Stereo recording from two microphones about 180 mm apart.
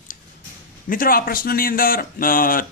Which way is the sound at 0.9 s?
55° left (ahead or behind).